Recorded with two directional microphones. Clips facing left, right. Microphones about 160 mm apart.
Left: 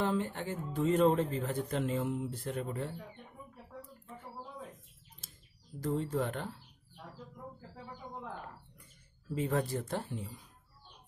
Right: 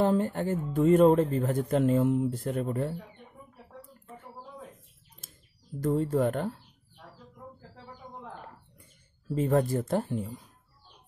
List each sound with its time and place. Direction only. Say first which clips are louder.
0.0 s speech: right 7 dB; 45° right (ahead or behind)
5.8 s speech: right 7 dB; 50° right (ahead or behind)
9.3 s speech: right 7 dB; 40° right (ahead or behind)